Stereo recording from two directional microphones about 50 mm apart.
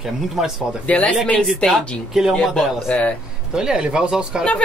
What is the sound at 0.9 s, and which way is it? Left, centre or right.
Speech, left.